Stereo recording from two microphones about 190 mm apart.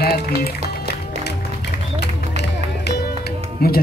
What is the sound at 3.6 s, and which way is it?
Speech, 55° left (ahead or behind).